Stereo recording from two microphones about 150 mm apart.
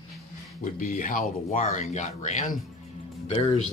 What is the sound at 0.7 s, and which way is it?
Speech, 60° left (ahead or behind).